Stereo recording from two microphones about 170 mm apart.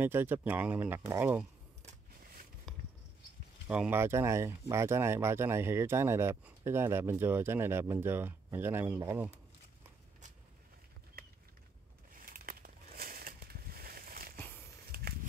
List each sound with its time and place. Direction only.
0.0 s speech: 10° right (ahead or behind)
2.7 s bird flight: 5° left (ahead or behind)
3.6 s speech: 5° right (ahead or behind)
11.2 s a sound: 60° right (ahead or behind)